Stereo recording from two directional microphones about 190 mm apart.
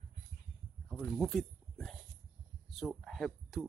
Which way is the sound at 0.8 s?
Centre (ahead or behind).